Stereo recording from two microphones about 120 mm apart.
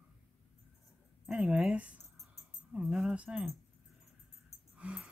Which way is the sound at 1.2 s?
5° right (ahead or behind).